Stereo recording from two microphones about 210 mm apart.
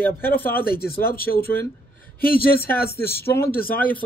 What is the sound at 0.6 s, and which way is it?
A man's voice, 45° left (ahead or behind).